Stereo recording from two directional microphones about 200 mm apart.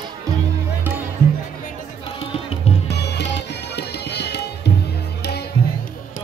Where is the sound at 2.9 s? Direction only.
60° left (ahead or behind).